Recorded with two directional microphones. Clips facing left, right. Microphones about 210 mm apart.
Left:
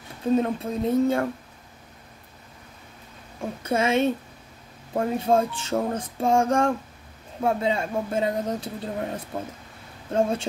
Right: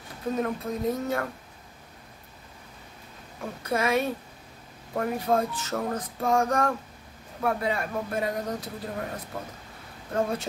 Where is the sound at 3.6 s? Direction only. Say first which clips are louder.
Left 3 dB; 25° left (ahead or behind).